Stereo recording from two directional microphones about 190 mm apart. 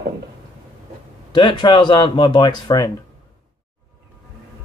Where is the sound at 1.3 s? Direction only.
25° left (ahead or behind).